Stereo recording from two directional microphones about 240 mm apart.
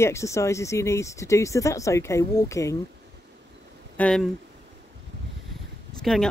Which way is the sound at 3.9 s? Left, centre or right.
Centre.